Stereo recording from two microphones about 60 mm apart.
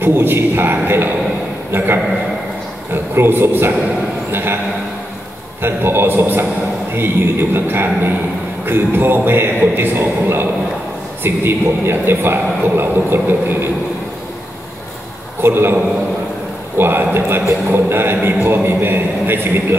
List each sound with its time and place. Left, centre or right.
0.0 s a man's voice: right
2.9 s a man's voice: right
5.6 s a man's voice: right
15.4 s a man's voice: right